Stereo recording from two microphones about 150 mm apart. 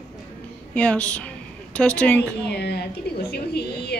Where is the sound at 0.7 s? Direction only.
10° left (ahead or behind).